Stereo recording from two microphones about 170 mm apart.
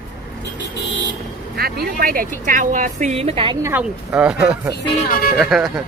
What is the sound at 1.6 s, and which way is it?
A woman's voice, 60° right (ahead or behind).